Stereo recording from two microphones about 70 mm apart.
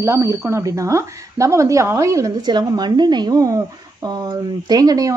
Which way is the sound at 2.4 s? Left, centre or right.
Right.